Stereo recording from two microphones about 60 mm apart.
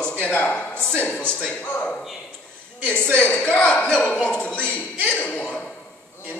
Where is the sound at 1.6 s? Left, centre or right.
Left.